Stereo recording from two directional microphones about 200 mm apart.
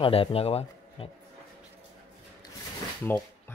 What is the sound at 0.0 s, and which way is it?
Speech, 25° left (ahead or behind).